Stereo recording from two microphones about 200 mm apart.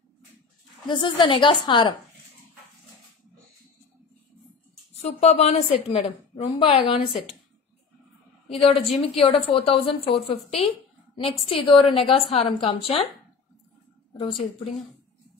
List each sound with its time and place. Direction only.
0.8 s a woman's voice: 20° left (ahead or behind)
5.0 s a woman's voice: 30° left (ahead or behind)
8.5 s a woman's voice: 30° left (ahead or behind)
14.4 s a woman's voice: 35° left (ahead or behind)